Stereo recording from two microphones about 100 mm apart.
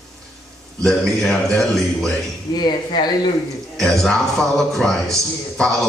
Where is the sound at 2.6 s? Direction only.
45° left (ahead or behind).